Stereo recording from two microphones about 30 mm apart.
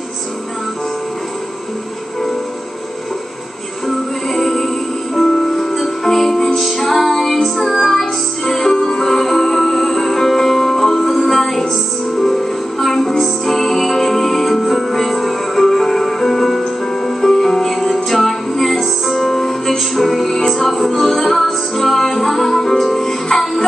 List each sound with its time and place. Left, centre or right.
3.8 s music: centre
8.7 s music: left
9.0 s music: centre